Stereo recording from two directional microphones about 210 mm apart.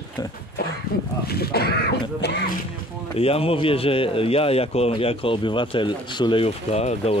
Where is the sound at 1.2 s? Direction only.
50° left (ahead or behind).